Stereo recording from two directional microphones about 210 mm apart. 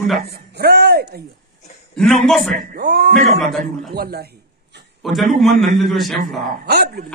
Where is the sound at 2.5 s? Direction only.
45° right (ahead or behind).